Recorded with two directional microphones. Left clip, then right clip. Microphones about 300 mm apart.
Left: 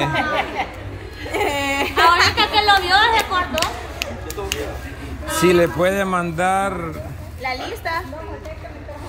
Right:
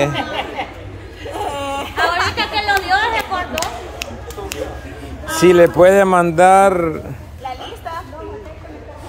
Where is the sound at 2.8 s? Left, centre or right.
Left.